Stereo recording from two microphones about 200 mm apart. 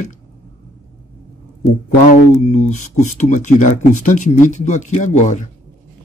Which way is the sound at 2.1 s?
35° left (ahead or behind).